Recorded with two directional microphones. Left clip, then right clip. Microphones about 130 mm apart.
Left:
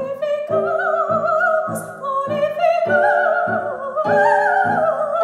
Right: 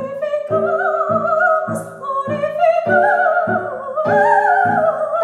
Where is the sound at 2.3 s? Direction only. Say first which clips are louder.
Right 2 dB; 20° left (ahead or behind).